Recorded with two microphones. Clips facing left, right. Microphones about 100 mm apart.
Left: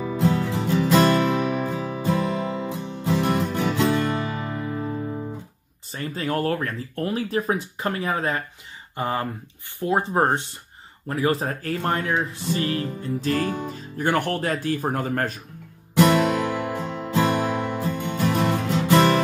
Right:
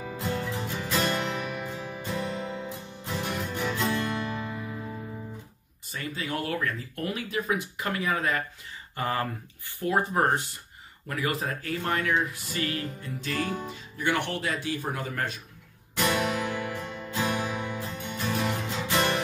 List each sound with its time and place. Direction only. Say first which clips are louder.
0.2 s music: left 8 dB; 90° left
5.9 s speech: left 6 dB; 35° left (ahead or behind)
16.0 s music: left 9 dB; 90° left